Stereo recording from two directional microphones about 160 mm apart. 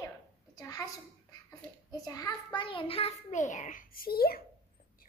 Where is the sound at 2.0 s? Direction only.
25° left (ahead or behind); by 4.4 s 70° left (ahead or behind).